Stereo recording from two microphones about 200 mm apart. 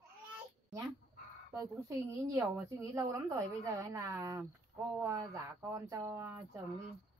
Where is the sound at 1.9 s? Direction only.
15° right (ahead or behind).